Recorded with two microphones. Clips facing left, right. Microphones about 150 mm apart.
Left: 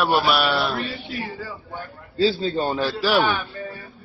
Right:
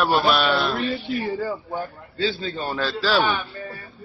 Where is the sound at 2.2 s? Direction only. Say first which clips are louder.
Left 5 dB; 35° left (ahead or behind).